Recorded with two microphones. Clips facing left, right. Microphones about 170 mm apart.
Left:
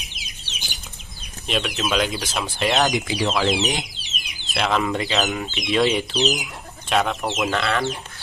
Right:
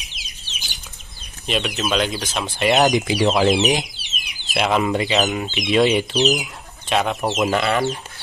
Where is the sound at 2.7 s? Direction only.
20° right (ahead or behind).